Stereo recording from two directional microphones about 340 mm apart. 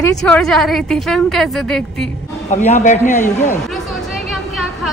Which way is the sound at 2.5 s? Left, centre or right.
Left.